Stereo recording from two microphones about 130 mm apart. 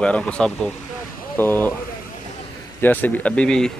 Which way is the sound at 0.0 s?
10° left (ahead or behind).